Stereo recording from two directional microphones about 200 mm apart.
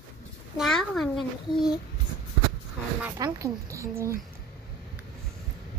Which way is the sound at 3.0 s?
15° right (ahead or behind).